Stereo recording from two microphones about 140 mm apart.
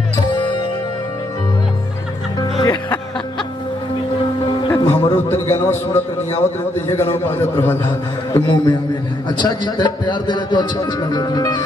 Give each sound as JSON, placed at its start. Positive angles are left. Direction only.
{"t": 0.3, "sound": "music", "side_deg": 35}
{"t": 2.6, "sound": "music", "side_deg": 25}
{"t": 4.5, "sound": "music", "side_deg": 30}
{"t": 4.8, "sound": "a sound", "side_deg": 15}
{"t": 5.7, "sound": "a man's voice", "side_deg": 15}
{"t": 8.4, "sound": "speech", "side_deg": 35}